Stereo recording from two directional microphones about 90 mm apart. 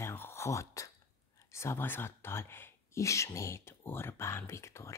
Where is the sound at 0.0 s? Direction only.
25° left (ahead or behind).